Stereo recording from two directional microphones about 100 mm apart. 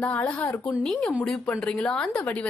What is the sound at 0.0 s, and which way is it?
A woman's voice, 15° left (ahead or behind).